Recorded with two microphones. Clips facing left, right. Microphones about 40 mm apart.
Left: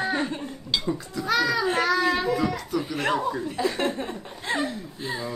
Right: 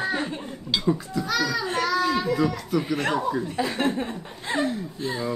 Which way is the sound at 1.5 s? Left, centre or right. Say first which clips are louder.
Left 3 dB; centre.